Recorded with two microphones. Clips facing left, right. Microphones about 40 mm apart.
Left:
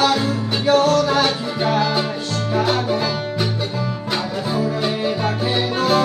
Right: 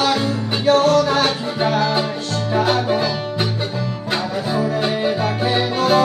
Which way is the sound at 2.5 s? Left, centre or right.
Right.